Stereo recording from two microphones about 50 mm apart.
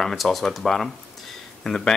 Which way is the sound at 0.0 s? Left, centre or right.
Centre.